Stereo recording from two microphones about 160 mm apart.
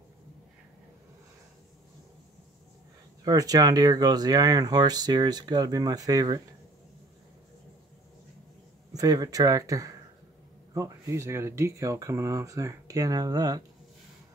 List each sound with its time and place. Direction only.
3.3 s speech: 25° right (ahead or behind)
8.9 s speech: 25° right (ahead or behind)